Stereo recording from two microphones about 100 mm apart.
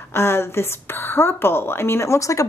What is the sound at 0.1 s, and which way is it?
Speech, 25° left (ahead or behind).